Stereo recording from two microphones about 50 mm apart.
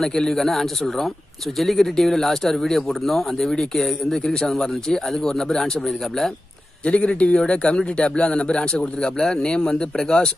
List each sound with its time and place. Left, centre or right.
0.0 s speech: centre
6.9 s a man's voice: left